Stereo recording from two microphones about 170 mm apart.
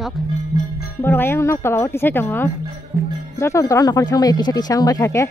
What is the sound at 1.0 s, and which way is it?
Speech, 15° left (ahead or behind).